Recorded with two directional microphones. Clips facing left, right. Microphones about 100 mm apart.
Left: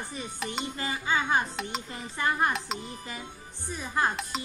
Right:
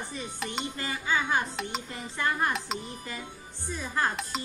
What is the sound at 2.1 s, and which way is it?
Speech, 20° left (ahead or behind).